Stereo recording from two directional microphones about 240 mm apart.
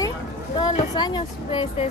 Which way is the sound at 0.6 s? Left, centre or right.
Centre.